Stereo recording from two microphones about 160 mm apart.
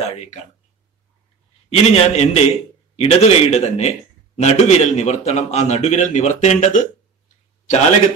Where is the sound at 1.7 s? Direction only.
40° left (ahead or behind).